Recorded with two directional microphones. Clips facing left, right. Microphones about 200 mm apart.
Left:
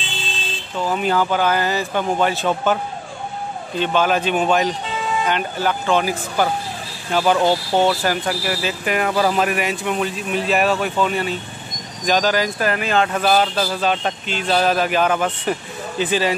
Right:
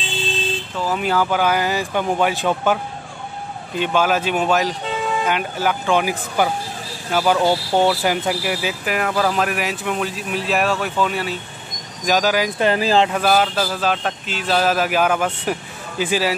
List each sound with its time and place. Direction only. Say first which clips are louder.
0.7 s speech: left 1 dB; 5° right (ahead or behind)
12.5 s speech: right 3 dB; 25° right (ahead or behind)
13.1 s speech: even; 5° right (ahead or behind)